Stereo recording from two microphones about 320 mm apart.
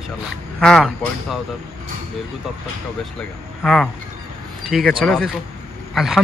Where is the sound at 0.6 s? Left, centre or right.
Centre.